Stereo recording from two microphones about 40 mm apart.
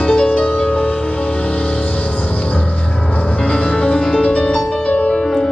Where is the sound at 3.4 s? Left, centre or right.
Left.